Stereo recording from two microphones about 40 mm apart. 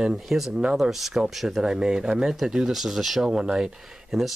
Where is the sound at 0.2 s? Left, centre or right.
Centre.